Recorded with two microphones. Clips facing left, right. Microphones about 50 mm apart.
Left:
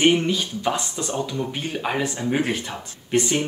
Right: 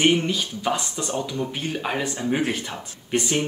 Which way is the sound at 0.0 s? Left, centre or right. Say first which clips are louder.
Left 2 dB; centre.